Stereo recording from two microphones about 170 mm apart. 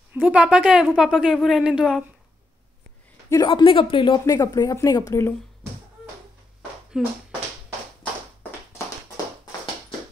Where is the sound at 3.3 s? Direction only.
25° left (ahead or behind).